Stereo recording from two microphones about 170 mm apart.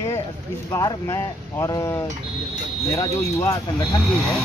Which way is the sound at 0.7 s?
15° left (ahead or behind).